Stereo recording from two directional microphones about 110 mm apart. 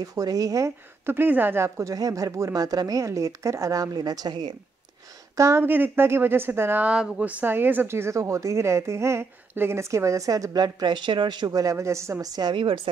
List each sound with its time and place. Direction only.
0.0 s speech: 35° right (ahead or behind)
5.3 s speech: 25° right (ahead or behind); by 12.8 s 50° right (ahead or behind)